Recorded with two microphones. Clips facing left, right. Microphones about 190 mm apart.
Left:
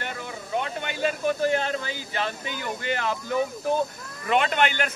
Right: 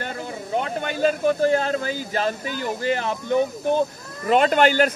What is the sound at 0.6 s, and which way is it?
Speech, 40° right (ahead or behind).